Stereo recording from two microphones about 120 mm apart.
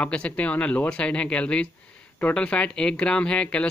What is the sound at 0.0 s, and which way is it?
Speech, 10° left (ahead or behind).